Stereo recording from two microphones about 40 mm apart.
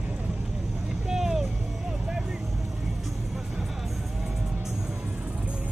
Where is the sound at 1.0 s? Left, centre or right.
Centre.